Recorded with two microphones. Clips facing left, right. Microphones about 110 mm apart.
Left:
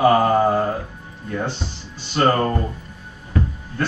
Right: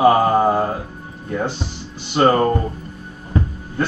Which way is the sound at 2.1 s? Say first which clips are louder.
Right 3 dB; 15° right (ahead or behind).